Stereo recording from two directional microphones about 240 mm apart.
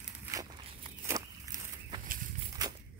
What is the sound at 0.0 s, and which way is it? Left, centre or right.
Walk, centre.